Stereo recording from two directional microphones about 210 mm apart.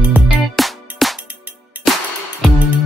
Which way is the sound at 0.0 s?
5° right (ahead or behind).